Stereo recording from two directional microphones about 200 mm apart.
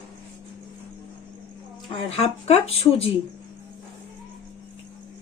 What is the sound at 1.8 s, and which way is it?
Speech, 30° left (ahead or behind).